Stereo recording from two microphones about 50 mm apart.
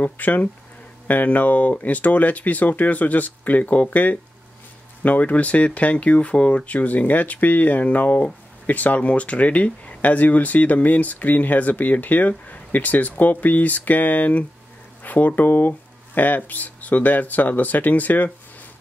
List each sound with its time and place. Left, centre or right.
0.0 s speech: left